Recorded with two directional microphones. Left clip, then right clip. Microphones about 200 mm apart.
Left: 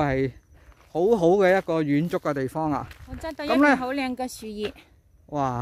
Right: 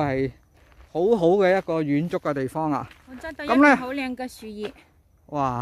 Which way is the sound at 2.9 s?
20° left (ahead or behind).